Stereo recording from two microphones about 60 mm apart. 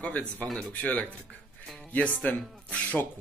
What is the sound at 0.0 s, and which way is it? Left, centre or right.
Speech, left.